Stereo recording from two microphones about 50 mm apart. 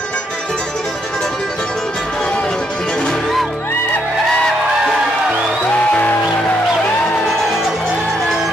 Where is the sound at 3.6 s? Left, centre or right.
Left.